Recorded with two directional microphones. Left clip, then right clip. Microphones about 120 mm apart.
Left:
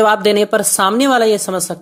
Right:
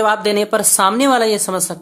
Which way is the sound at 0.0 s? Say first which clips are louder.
Left 3 dB; 35° left (ahead or behind).